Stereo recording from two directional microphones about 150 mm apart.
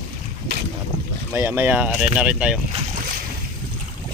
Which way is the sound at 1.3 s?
15° right (ahead or behind).